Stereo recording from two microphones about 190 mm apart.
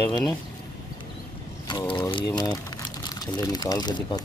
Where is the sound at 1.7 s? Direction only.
25° left (ahead or behind).